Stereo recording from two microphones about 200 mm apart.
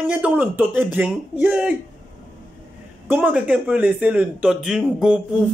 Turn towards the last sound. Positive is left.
turn(degrees=-5)  # may be behind; listen again after turning